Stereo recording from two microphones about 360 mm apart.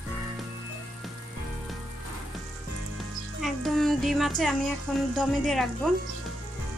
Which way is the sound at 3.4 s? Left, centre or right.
Centre.